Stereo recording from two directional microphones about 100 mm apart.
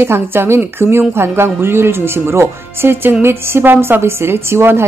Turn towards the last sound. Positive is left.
turn(degrees=-25)  # may be behind; listen again after turning